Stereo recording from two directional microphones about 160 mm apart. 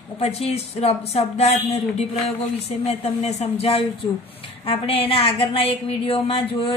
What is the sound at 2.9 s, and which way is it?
Speech, 40° left (ahead or behind).